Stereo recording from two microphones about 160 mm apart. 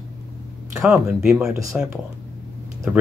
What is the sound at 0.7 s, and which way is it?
Speech, 5° right (ahead or behind).